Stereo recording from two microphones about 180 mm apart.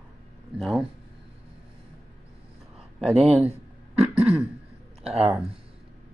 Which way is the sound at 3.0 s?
Centre (ahead or behind).